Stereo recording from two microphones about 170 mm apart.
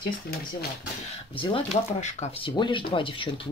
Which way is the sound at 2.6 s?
30° left (ahead or behind).